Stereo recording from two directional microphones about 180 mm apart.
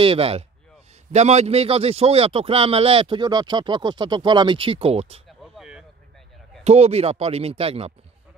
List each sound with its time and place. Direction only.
0.0 s a man's voice: 30° right (ahead or behind)
5.4 s a sound: 5° right (ahead or behind)
6.6 s a man's voice: 35° right (ahead or behind)